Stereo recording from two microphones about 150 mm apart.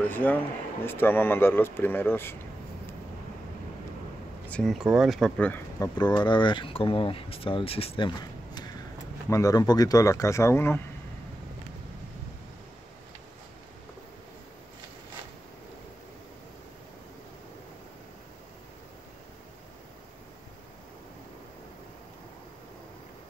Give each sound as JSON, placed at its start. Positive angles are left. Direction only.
{"t": 0.0, "sound": "speech", "side_deg": 10}
{"t": 4.5, "sound": "speech", "side_deg": 10}
{"t": 4.7, "sound": "speech", "side_deg": -5}
{"t": 5.8, "sound": "speech", "side_deg": 30}